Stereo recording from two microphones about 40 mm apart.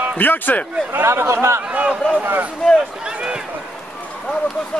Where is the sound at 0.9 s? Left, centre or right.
Right.